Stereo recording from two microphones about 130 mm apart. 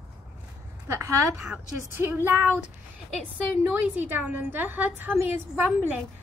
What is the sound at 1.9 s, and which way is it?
Speech, 15° right (ahead or behind).